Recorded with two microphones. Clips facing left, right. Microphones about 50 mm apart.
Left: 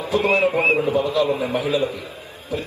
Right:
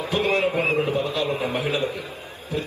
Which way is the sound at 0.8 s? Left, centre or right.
Left.